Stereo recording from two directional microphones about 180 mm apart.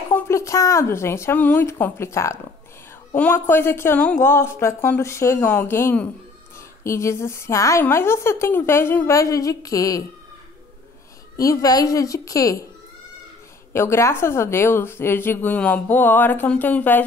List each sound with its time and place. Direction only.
0.1 s a woman's voice: 15° left (ahead or behind)
11.3 s a woman's voice: 20° left (ahead or behind)
13.7 s a woman's voice: 15° left (ahead or behind)